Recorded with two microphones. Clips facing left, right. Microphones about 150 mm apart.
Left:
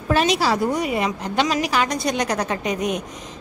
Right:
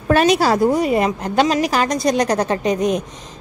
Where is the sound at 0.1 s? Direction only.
50° right (ahead or behind).